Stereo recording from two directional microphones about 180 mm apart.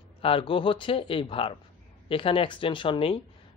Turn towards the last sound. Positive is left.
turn(degrees=30)  # may be behind; listen again after turning